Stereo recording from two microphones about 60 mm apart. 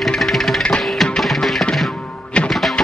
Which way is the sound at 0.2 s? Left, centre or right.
Centre.